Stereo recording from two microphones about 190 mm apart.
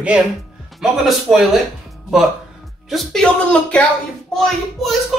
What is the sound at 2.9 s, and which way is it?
A man's voice, centre (ahead or behind).